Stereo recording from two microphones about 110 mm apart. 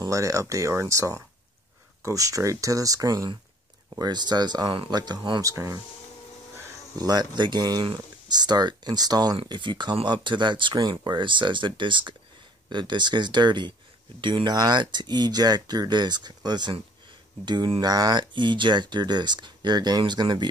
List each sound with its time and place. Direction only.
0.0 s speech: 30° right (ahead or behind)
5.4 s speech: 30° right (ahead or behind)
7.0 s speech: 35° right (ahead or behind)
9.4 s speech: 45° right (ahead or behind)
17.7 s speech: 35° right (ahead or behind)